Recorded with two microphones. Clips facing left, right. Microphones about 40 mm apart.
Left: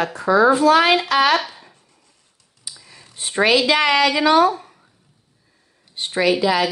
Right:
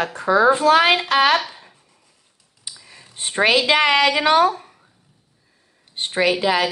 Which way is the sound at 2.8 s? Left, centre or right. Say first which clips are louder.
Right 1 dB; centre.